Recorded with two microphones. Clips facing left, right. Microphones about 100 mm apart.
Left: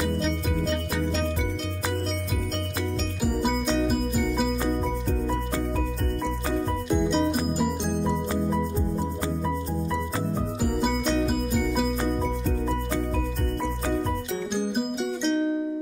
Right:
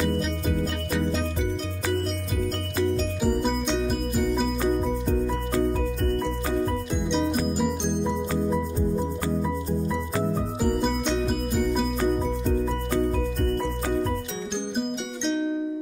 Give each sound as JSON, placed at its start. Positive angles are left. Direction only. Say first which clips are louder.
{"t": 3.9, "sound": "music", "louder": "even", "side_deg": 0}
{"t": 7.1, "sound": "music", "louder": "even", "side_deg": 5}
{"t": 10.6, "sound": "music", "louder": "right 1 dB", "side_deg": 0}